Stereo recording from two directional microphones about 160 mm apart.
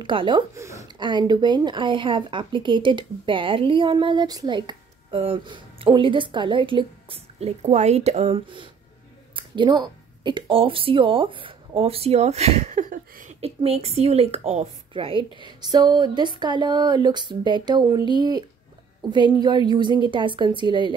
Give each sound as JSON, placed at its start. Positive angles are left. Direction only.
{"t": 0.0, "sound": "speech", "side_deg": -30}
{"t": 9.3, "sound": "speech", "side_deg": -30}
{"t": 12.9, "sound": "a sound", "side_deg": -50}
{"t": 13.6, "sound": "a woman's voice", "side_deg": -40}
{"t": 19.4, "sound": "a woman's voice", "side_deg": -30}